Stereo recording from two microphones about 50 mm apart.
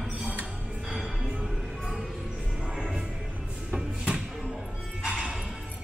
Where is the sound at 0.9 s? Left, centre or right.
Centre.